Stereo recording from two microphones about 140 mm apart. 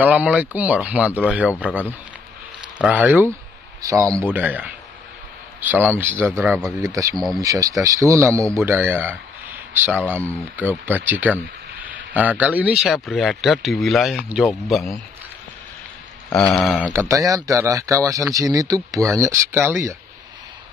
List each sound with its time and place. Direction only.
0.0 s speech: 10° right (ahead or behind)
2.8 s speech: 10° right (ahead or behind)
3.8 s speech: 25° right (ahead or behind); by 15.0 s centre (ahead or behind)
16.3 s speech: 5° left (ahead or behind)
17.1 s speech: 25° right (ahead or behind)